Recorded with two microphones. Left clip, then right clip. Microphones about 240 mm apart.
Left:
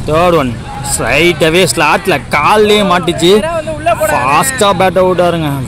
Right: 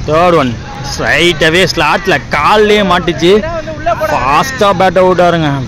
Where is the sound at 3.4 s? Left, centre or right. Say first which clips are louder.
Left 2 dB; left.